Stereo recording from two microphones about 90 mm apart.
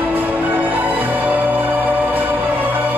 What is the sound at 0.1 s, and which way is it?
Music, 20° right (ahead or behind).